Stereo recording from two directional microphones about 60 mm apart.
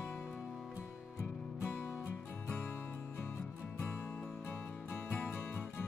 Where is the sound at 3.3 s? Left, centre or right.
Left.